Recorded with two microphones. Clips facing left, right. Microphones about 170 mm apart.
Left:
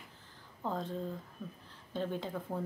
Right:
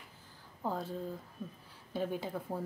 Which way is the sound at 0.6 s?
5° right (ahead or behind).